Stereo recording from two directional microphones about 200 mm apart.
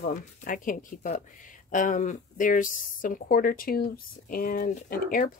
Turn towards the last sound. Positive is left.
turn(degrees=45)  # may be behind; listen again after turning